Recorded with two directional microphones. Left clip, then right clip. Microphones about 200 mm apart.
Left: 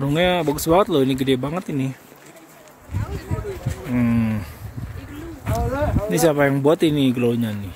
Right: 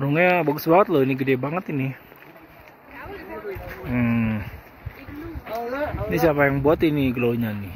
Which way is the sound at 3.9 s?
15° left (ahead or behind).